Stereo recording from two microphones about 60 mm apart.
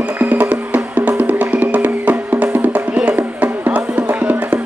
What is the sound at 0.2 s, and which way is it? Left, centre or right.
Music, right.